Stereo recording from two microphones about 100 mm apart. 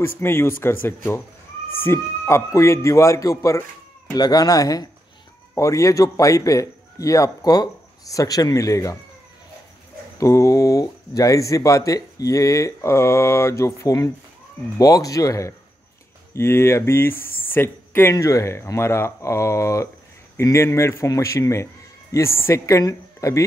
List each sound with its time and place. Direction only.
0.0 s a man's voice: 25° left (ahead or behind)
10.1 s a man's voice: 30° left (ahead or behind)